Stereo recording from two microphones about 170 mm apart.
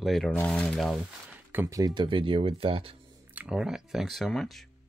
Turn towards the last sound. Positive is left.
turn(degrees=0)  # may be behind; listen again after turning